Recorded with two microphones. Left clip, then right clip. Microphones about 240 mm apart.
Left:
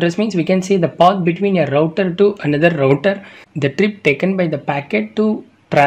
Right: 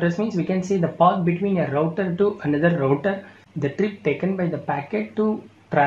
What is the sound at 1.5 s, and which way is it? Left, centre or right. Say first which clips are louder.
Speech: left 8 dB; left.